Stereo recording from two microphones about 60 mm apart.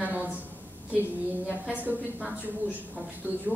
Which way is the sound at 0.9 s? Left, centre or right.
Right.